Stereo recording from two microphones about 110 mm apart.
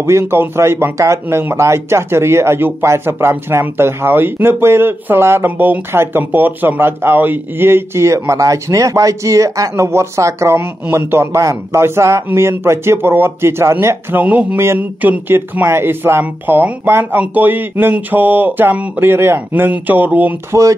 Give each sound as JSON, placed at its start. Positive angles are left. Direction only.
{"t": 0.0, "sound": "speech", "side_deg": -25}
{"t": 14.2, "sound": "speech", "side_deg": -10}